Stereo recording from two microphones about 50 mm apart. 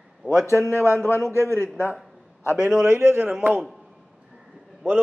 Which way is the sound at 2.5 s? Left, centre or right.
Centre.